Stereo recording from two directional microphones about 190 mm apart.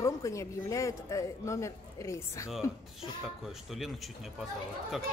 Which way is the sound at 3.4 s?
Centre (ahead or behind).